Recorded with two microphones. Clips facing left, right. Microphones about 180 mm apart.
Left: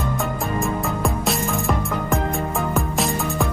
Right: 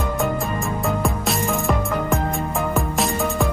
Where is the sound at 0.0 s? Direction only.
Centre (ahead or behind).